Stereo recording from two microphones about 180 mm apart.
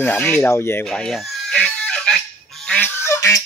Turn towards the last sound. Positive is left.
turn(degrees=15)  # may be behind; listen again after turning